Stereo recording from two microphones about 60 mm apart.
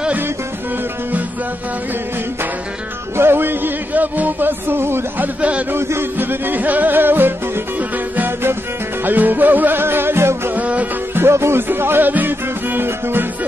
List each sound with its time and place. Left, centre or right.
3.2 s music: right
9.0 s music: right
10.5 s music: right
11.1 s music: right